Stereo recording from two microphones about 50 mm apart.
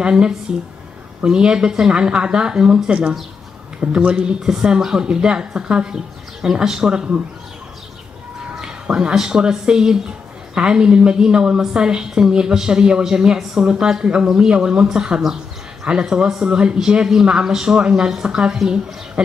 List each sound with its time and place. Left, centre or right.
0.0 s a woman's voice: centre
8.9 s a woman's voice: centre